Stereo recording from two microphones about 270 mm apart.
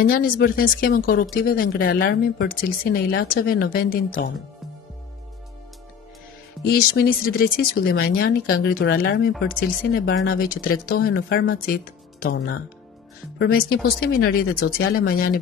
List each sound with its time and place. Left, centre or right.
0.0 s speech: left
6.7 s speech: left
8.7 s speech: left